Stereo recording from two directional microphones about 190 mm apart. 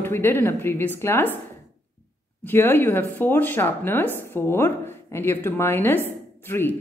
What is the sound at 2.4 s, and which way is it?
Speech, 10° left (ahead or behind).